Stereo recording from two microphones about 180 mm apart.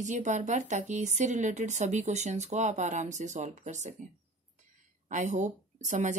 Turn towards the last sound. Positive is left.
turn(degrees=-45)  # may be behind; listen again after turning